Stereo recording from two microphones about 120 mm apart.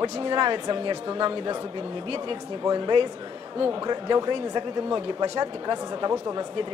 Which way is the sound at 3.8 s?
35° right (ahead or behind).